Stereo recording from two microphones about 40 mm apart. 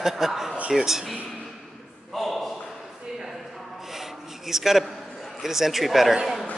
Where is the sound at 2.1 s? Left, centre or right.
Centre.